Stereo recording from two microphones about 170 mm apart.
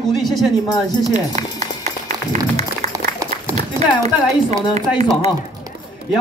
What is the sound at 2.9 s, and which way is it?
Applause, 20° right (ahead or behind).